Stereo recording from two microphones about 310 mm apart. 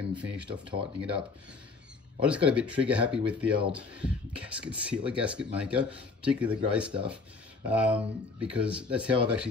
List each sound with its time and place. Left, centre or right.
0.1 s speech: centre
0.5 s speech: centre
2.2 s speech: centre